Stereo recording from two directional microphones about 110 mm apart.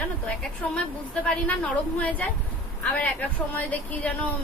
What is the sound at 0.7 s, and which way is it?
A woman's voice, 10° left (ahead or behind).